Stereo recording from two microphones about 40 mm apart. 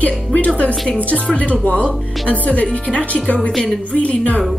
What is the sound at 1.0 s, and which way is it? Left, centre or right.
A woman's voice, left.